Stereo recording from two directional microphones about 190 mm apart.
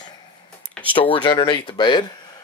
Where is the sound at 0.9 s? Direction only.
25° left (ahead or behind).